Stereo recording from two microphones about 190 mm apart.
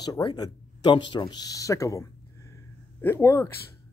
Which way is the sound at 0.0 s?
20° left (ahead or behind).